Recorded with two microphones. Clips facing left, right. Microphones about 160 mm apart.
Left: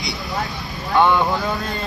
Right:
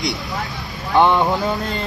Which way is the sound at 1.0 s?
20° right (ahead or behind).